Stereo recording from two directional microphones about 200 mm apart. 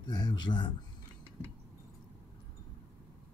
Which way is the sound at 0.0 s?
20° left (ahead or behind).